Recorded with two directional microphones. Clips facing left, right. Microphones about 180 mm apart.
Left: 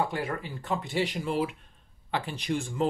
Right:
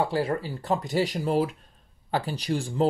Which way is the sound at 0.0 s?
30° right (ahead or behind).